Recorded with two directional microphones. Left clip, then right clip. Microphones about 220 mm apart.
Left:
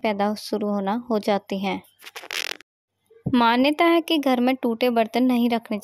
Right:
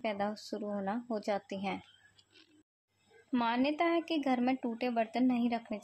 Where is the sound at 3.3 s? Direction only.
50° left (ahead or behind).